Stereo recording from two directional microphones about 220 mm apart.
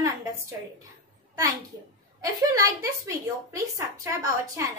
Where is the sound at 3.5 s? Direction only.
15° right (ahead or behind).